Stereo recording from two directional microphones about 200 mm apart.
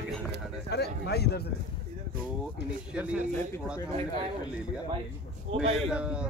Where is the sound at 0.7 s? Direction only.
55° left (ahead or behind).